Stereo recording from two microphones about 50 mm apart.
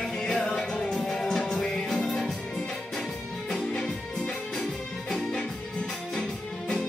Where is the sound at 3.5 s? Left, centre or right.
Centre.